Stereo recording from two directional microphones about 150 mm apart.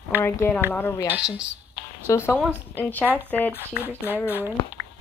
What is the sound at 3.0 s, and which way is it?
Speech, 10° right (ahead or behind).